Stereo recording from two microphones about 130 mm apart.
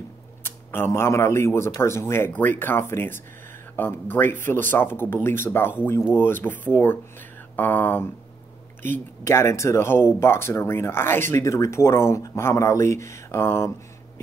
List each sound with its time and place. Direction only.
0.4 s speech: 20° left (ahead or behind)